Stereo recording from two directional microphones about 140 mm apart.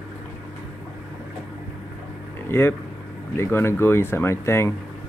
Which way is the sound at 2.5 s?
15° left (ahead or behind).